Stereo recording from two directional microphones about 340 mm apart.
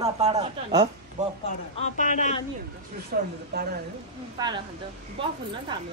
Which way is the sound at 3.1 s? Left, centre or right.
Right.